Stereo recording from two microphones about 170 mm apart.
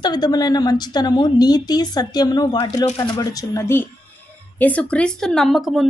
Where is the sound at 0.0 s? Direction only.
25° left (ahead or behind).